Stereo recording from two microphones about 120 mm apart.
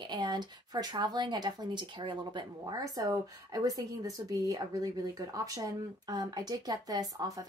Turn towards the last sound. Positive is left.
turn(degrees=-30)  # may be behind; listen again after turning